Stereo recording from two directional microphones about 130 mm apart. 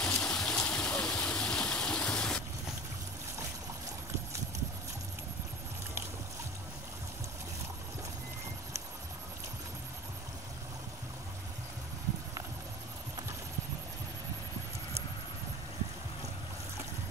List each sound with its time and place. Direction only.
0.0 s stream: 5° left (ahead or behind)